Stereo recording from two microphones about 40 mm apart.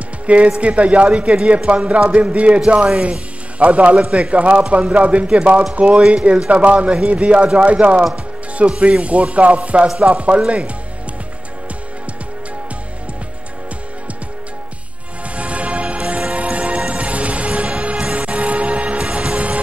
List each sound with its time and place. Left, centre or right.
0.3 s speech: right
15.3 s music: right